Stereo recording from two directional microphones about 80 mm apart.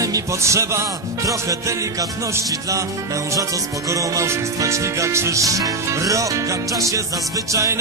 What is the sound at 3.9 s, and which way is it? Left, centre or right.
Music, right.